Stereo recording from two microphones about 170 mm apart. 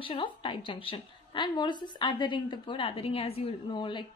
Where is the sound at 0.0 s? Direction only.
30° left (ahead or behind).